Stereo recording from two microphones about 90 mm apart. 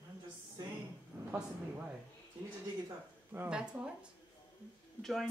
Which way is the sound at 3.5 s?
10° right (ahead or behind).